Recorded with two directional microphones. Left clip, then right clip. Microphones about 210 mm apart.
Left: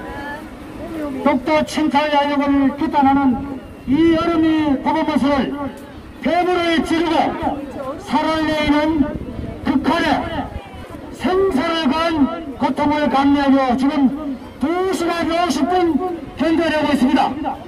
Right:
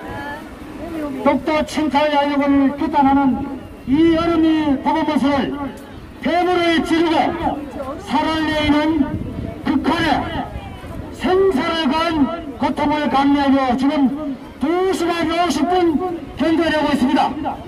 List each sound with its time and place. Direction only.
1.2 s speech: 20° left (ahead or behind)
9.7 s a sound: 20° left (ahead or behind)
11.2 s a man's voice: 20° left (ahead or behind)